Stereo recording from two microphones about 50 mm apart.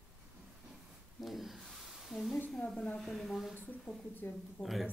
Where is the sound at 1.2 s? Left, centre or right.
Centre.